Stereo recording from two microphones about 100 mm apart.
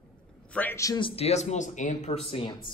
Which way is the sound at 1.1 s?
90° left.